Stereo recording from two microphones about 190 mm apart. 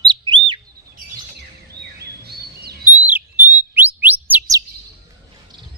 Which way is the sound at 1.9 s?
55° right (ahead or behind).